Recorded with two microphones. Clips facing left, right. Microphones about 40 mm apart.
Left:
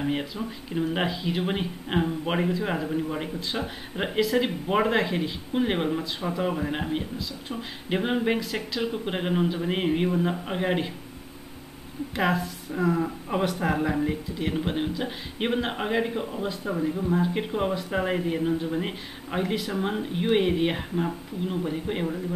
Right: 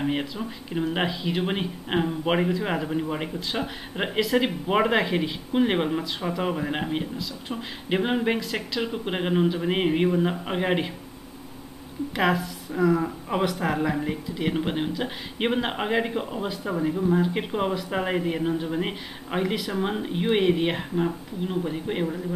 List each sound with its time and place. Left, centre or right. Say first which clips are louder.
0.0 s a man's voice: right 1 dB; centre
12.2 s speech: right 2 dB; centre